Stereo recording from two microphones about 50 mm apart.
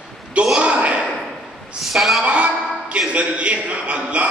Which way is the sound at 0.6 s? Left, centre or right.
Right.